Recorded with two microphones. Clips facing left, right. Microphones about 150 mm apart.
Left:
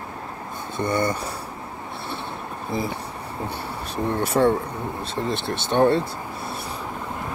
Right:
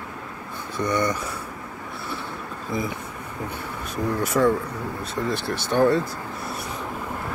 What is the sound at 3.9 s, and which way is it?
Speech, 30° left (ahead or behind).